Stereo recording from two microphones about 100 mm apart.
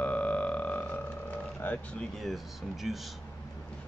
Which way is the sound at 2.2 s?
Centre (ahead or behind).